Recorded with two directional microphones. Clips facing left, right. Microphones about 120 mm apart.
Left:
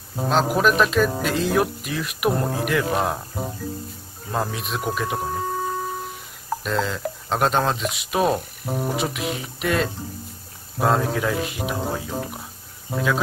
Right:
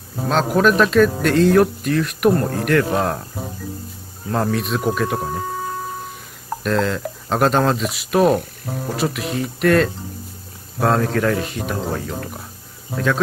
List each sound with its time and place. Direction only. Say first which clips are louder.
0.3 s speech: right 3 dB; 5° left (ahead or behind)
4.3 s speech: right 6 dB; 5° left (ahead or behind)
6.6 s speech: right 6 dB; centre (ahead or behind)